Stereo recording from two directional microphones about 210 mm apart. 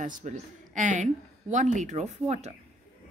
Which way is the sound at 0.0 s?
40° right (ahead or behind).